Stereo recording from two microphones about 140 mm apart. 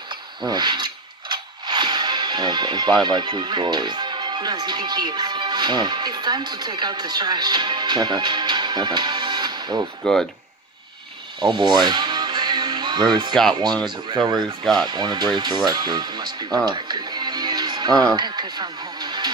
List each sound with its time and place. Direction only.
0.5 s mechanisms: 30° right (ahead or behind)
10.0 s speech: 5° left (ahead or behind)
11.4 s music: 30° right (ahead or behind)
14.2 s speech: 5° left (ahead or behind)
14.9 s speech: 30° right (ahead or behind)